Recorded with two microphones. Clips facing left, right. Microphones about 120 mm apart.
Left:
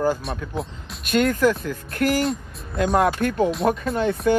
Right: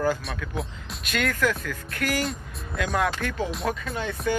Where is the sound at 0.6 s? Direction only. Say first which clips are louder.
Left 2 dB; centre (ahead or behind).